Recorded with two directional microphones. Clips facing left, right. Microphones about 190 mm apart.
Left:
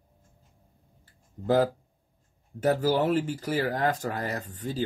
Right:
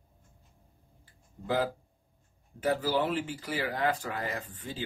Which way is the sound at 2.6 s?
40° left (ahead or behind).